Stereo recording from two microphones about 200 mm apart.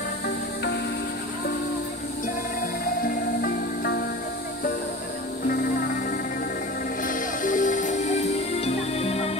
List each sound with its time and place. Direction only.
3.0 s music: 45° left (ahead or behind)
5.5 s music: 45° left (ahead or behind); by 9.3 s 30° left (ahead or behind)